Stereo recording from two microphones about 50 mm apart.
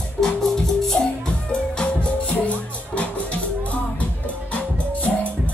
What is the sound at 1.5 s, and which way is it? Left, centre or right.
Music, left.